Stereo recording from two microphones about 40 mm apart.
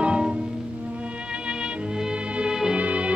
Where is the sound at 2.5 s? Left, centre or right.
Centre.